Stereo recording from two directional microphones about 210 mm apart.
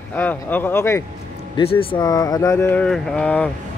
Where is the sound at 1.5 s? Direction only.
25° left (ahead or behind); by 3.5 s 5° left (ahead or behind).